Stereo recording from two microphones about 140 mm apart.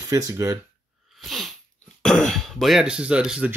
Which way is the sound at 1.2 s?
Centre (ahead or behind).